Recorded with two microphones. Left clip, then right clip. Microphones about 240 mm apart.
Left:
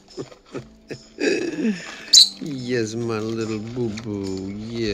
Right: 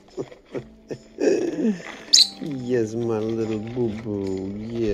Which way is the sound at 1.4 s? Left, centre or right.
Centre.